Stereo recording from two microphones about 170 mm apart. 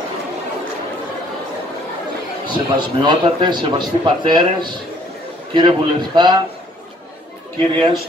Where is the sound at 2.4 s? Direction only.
25° right (ahead or behind).